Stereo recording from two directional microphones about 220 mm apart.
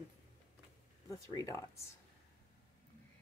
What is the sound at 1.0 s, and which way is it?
Speech, 15° left (ahead or behind).